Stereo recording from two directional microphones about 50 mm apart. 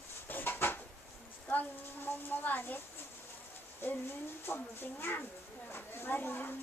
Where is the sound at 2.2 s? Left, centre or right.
Left.